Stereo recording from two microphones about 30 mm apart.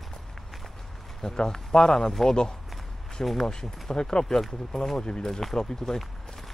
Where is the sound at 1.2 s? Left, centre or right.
Left.